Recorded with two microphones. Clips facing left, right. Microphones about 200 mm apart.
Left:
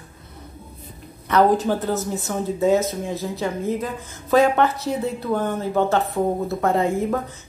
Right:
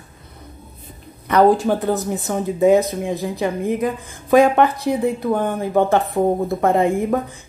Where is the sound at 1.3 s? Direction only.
15° right (ahead or behind).